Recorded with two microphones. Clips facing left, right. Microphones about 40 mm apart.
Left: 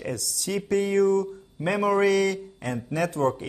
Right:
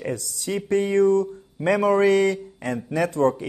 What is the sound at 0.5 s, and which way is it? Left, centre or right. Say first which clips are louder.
A man's voice: right 2 dB; right.